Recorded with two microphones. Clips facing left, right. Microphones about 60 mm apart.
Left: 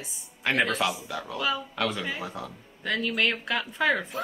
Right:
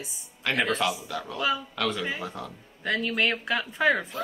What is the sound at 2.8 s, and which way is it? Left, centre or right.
Speech, centre.